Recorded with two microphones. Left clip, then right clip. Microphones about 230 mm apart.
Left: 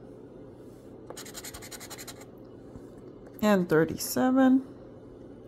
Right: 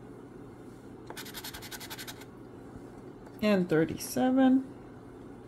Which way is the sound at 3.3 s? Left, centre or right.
Left.